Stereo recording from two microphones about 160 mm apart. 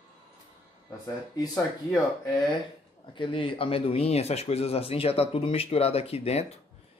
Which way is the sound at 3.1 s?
30° left (ahead or behind).